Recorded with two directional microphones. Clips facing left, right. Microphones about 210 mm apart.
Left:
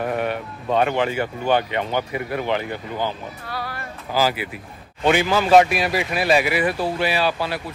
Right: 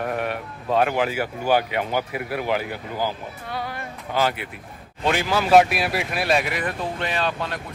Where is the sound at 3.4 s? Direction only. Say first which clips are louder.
Right 1 dB; 20° right (ahead or behind).